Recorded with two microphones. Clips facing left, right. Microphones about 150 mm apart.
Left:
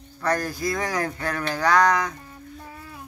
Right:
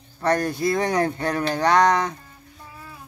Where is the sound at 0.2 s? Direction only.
25° right (ahead or behind).